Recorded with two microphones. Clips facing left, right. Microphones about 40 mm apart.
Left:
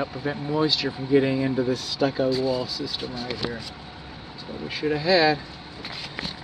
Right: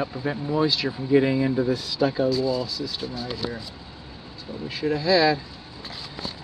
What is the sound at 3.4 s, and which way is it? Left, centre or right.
Speech, left.